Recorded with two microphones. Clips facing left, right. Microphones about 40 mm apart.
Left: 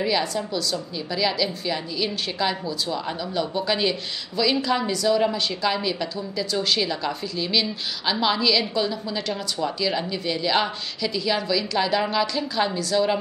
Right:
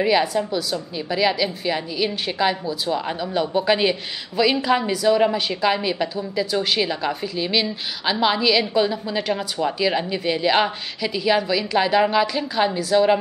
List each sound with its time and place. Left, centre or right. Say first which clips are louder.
0.0 s a woman's voice: right 5 dB; centre